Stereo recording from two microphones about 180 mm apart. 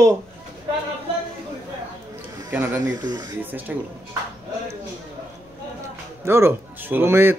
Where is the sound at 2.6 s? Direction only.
20° right (ahead or behind).